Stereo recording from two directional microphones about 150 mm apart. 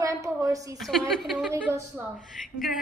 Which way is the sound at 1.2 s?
Centre (ahead or behind).